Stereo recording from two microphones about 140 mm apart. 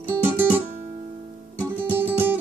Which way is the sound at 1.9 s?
15° right (ahead or behind).